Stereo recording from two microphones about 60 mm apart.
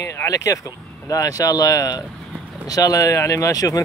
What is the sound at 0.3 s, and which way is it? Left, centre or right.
Speech, left.